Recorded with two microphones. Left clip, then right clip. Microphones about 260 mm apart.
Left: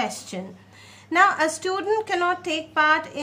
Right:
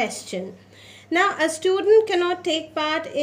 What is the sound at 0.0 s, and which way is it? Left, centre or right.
A woman's voice, left.